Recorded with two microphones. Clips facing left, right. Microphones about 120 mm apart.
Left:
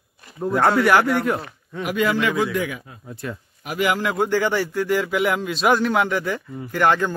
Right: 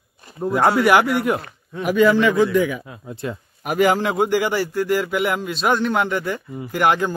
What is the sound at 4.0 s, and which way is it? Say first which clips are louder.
Speech: right 2 dB; 25° right (ahead or behind).